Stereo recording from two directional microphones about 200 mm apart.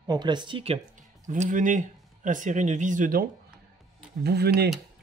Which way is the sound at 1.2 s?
40° right (ahead or behind).